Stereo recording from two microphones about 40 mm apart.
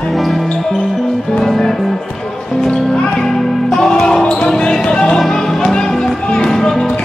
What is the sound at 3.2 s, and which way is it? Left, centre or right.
Basketball bounce, centre.